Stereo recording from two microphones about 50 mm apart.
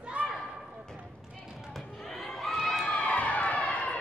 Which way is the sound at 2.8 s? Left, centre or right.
Left.